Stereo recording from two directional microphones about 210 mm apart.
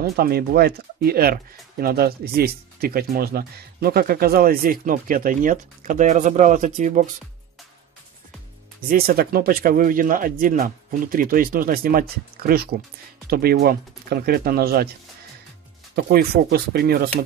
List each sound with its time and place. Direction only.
0.0 s speech: 45° right (ahead or behind)
8.8 s speech: 45° right (ahead or behind)
16.0 s speech: 45° right (ahead or behind)